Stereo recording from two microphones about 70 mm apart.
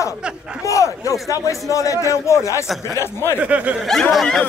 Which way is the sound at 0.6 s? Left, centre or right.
Left.